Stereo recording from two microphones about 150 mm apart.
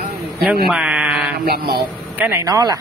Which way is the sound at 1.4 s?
90° right.